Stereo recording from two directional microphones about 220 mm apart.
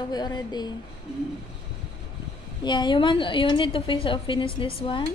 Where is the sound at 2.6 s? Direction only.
20° left (ahead or behind).